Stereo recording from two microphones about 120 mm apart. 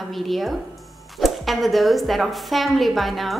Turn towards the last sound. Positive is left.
turn(degrees=0)  # may be behind; listen again after turning